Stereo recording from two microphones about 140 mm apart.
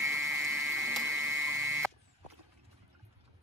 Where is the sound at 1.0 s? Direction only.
20° right (ahead or behind).